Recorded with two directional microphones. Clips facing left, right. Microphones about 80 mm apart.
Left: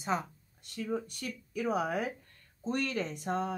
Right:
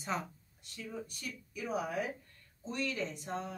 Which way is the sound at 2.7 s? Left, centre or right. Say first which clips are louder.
Left 4 dB; left.